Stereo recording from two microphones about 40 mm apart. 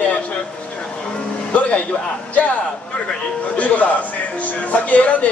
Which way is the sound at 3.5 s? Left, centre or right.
Left.